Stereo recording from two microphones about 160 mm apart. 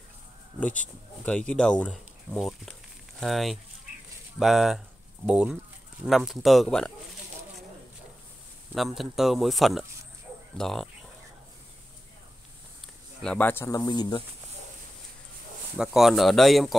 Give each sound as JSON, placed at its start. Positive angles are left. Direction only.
{"t": 0.6, "sound": "speech", "side_deg": 10}
{"t": 8.7, "sound": "speech", "side_deg": 0}
{"t": 13.2, "sound": "speech", "side_deg": 10}
{"t": 15.8, "sound": "speech", "side_deg": 0}